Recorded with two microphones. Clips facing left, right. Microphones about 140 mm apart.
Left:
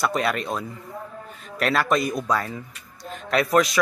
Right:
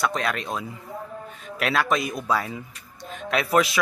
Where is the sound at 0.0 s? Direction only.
5° left (ahead or behind).